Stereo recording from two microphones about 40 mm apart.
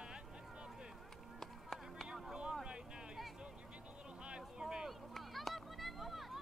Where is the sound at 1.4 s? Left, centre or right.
Centre.